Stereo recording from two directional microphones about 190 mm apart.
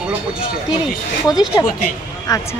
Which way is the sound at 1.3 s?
20° left (ahead or behind).